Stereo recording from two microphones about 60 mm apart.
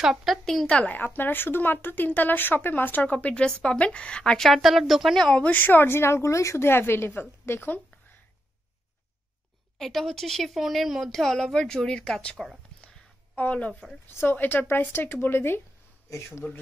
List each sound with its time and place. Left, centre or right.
0.0 s speech: centre
0.7 s a woman's voice: centre
0.9 s a woman's voice: left; by 5.2 s centre
5.2 s a woman's voice: centre
5.5 s speech: left
9.8 s speech: centre; by 13.8 s left
14.0 s speech: left
16.1 s speech: left